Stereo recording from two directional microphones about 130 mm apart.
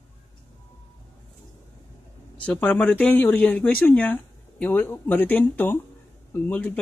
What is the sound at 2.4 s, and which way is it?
Speech, 10° left (ahead or behind).